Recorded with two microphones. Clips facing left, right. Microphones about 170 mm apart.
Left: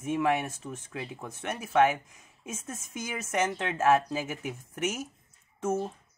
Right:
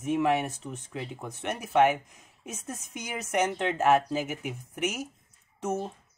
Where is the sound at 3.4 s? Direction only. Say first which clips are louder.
Right 2 dB; 15° right (ahead or behind).